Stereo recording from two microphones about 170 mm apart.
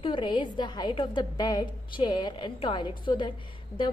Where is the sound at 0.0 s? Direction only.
25° left (ahead or behind).